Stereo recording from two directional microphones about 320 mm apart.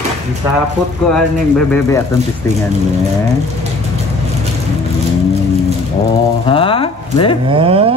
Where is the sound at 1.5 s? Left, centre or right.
Centre.